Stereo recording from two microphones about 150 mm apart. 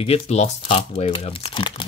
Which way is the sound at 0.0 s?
45° left (ahead or behind).